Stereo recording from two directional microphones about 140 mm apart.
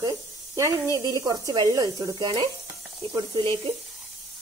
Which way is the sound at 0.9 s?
25° right (ahead or behind).